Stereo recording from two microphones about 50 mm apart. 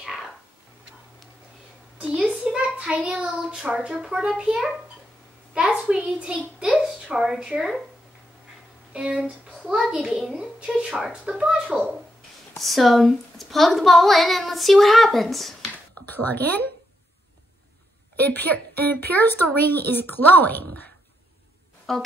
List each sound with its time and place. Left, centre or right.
0.0 s a sound: centre
2.0 s a sound: right
2.4 s a child's voice: right
8.9 s a woman's voice: right
10.4 s a woman's voice: right
12.5 s a woman's voice: centre
16.1 s a woman's voice: left
18.2 s a woman's voice: left
21.9 s speech: centre